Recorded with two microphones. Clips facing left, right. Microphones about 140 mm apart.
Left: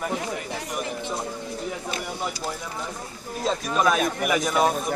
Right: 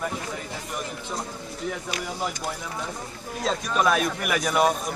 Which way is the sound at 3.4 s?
Centre (ahead or behind).